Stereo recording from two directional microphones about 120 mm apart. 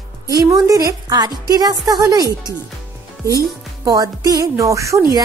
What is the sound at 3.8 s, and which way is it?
A woman's voice, 30° right (ahead or behind).